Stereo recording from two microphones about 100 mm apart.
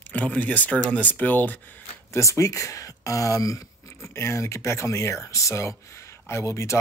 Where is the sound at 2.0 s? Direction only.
30° left (ahead or behind).